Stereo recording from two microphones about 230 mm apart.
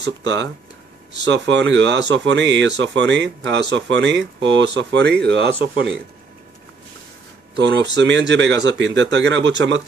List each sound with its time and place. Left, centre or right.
0.0 s speech: right
7.5 s speech: right